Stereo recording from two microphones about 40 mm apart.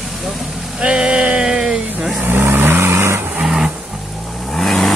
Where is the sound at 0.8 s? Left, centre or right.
Right.